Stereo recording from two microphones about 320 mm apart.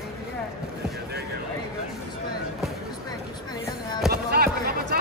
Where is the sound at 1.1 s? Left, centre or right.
Right.